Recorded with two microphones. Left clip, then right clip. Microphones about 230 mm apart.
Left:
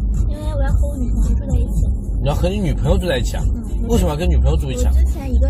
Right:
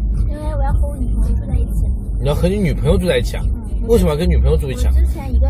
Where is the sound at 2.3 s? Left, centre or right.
Right.